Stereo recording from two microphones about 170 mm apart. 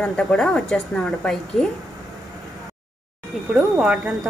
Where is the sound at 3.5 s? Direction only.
5° right (ahead or behind).